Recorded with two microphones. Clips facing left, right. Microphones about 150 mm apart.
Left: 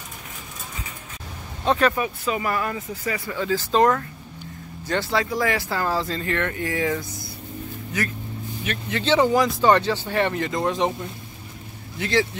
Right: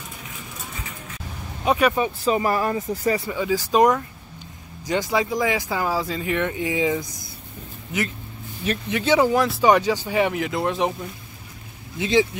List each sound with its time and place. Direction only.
1.6 s speech: 10° right (ahead or behind)
2.0 s speech: 35° right (ahead or behind)
3.3 s speech: 10° right (ahead or behind)
8.9 s speech: 10° right (ahead or behind)
12.0 s speech: 20° right (ahead or behind)